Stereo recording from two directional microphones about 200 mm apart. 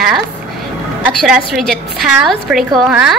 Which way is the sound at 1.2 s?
Centre (ahead or behind).